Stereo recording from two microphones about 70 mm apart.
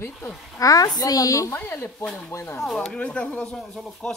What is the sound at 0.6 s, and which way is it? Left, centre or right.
Speech, left.